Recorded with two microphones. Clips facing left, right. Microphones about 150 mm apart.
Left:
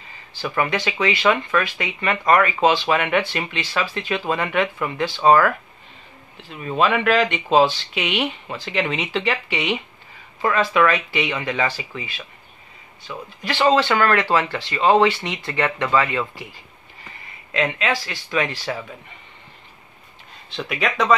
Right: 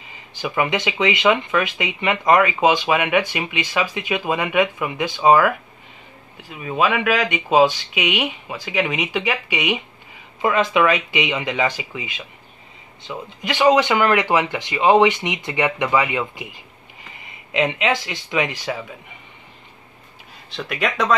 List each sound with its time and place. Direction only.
0.0 s speech: 15° right (ahead or behind)
20.4 s speech: centre (ahead or behind)